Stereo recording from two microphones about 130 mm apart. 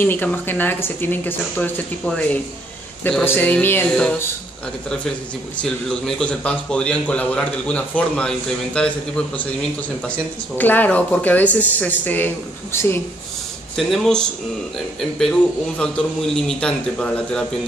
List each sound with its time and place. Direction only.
0.0 s a man's voice: 15° left (ahead or behind)
13.7 s a man's voice: centre (ahead or behind)